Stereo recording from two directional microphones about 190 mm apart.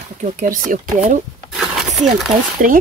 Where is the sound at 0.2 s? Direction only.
45° right (ahead or behind).